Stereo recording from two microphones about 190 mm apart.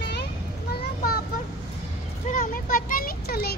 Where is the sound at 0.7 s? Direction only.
55° left (ahead or behind).